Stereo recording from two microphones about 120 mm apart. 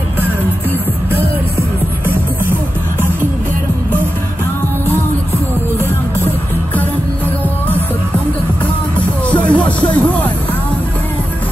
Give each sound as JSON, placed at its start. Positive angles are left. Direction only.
{"t": 9.3, "sound": "music", "side_deg": 10}